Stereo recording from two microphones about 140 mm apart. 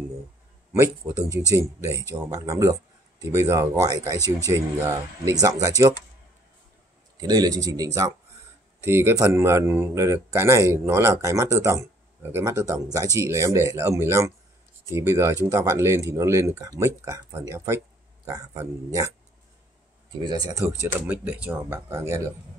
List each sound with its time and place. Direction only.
0.7 s speech: 20° right (ahead or behind)
7.2 s speech: 30° right (ahead or behind)
20.2 s speech: 30° right (ahead or behind)
20.9 s speech: 10° right (ahead or behind)